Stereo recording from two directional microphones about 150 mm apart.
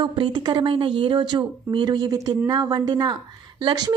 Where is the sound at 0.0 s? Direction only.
30° right (ahead or behind).